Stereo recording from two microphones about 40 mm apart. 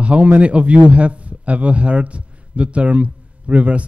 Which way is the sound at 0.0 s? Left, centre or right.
Right.